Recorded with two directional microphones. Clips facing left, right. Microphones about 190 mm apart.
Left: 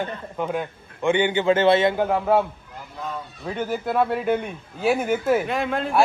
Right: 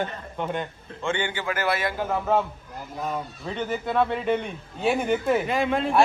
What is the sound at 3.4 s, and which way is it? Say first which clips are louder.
Speech: left 4 dB; 5° left (ahead or behind).